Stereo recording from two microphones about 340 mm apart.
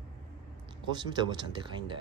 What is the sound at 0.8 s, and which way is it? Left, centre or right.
Speech, centre.